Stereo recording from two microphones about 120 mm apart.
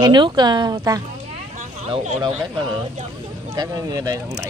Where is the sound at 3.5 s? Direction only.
30° right (ahead or behind).